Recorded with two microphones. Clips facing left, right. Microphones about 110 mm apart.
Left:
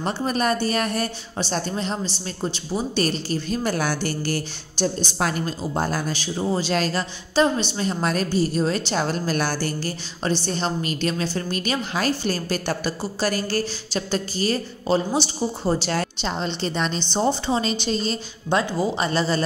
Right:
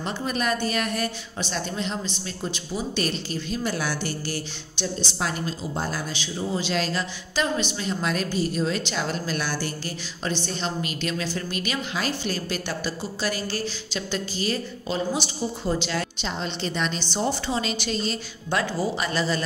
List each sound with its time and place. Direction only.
0.0 s a woman's voice: 40° left (ahead or behind)
7.3 s a woman's voice: 30° left (ahead or behind)
17.0 s a woman's voice: 25° left (ahead or behind)